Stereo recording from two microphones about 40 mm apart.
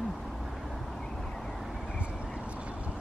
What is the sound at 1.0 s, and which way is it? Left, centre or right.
Vehicle, centre.